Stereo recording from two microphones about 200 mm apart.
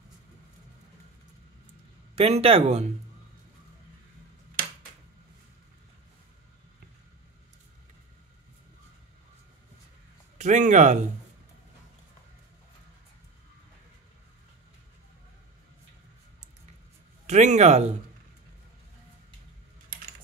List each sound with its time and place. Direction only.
2.1 s speech: 30° right (ahead or behind)
10.3 s speech: 40° right (ahead or behind)
17.3 s speech: 35° right (ahead or behind)